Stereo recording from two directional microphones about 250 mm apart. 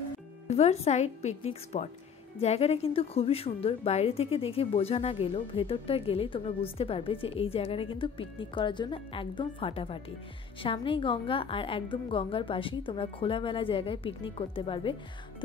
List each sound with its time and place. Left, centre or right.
0.5 s speech: left